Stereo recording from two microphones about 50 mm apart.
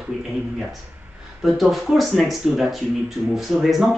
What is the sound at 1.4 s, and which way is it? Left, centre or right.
Speech, centre.